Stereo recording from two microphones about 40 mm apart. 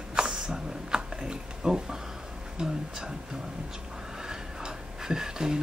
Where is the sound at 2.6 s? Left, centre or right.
Right.